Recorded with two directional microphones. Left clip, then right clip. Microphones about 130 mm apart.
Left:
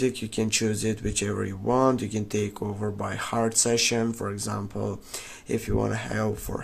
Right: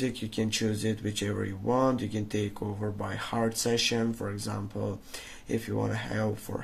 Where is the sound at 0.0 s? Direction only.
35° left (ahead or behind).